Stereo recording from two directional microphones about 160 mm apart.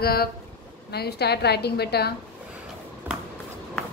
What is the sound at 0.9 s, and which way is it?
A woman's voice, 90° left.